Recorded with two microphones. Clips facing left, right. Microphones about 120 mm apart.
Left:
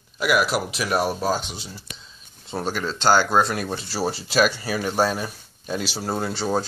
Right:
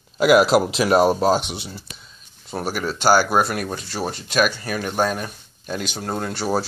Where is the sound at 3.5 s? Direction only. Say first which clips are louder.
Right 1 dB; centre (ahead or behind).